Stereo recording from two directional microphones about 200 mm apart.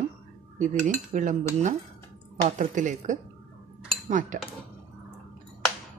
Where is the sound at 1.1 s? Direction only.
40° right (ahead or behind).